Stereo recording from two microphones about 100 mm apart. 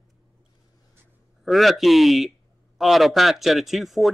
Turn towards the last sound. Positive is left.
turn(degrees=0)  # may be behind; listen again after turning